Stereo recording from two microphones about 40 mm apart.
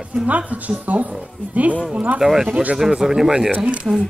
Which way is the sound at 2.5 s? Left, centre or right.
Right.